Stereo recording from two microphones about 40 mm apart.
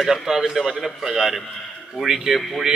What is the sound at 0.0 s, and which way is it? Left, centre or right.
A man's voice, centre.